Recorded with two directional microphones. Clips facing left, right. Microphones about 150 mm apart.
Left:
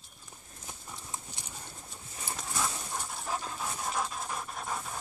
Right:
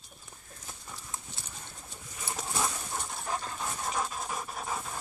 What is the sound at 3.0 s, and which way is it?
Pant, centre (ahead or behind).